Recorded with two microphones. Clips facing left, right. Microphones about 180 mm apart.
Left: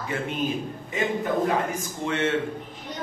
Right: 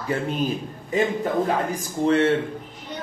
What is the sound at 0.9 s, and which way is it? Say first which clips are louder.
Speech: right 3 dB; 35° right (ahead or behind).